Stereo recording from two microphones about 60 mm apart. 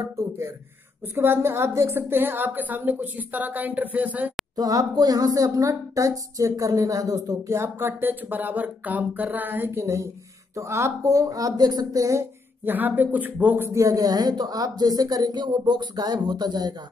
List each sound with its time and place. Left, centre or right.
0.0 s speech: right
1.0 s a woman's voice: right
1.9 s a woman's voice: right
4.6 s speech: right
7.8 s speech: right
9.7 s a woman's voice: right
12.6 s speech: right
13.8 s speech: right